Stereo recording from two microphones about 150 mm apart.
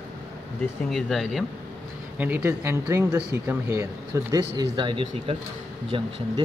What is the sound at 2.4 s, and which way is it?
Speech, 20° right (ahead or behind).